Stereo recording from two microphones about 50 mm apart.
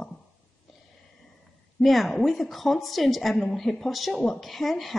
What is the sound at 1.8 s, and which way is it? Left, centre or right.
A woman's voice, centre.